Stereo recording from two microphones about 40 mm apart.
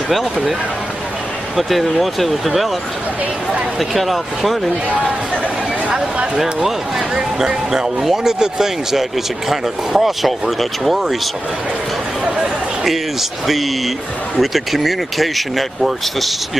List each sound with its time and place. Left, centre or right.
1.6 s speech: centre
3.9 s speech: centre
6.3 s speech: centre
14.4 s speech: centre